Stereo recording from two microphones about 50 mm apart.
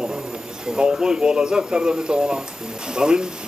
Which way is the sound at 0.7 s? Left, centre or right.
Centre.